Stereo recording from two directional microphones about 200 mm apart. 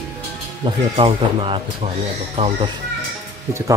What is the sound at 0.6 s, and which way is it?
Speech, 25° right (ahead or behind).